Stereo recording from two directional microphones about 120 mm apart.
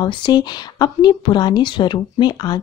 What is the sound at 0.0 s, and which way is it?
A woman's voice, 35° left (ahead or behind).